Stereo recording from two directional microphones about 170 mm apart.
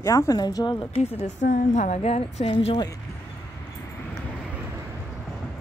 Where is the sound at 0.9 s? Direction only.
45° left (ahead or behind).